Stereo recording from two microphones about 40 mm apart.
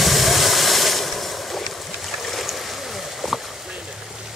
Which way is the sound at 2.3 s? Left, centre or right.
Centre.